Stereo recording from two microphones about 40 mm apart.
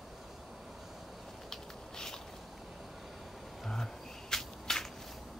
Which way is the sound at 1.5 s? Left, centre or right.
Centre.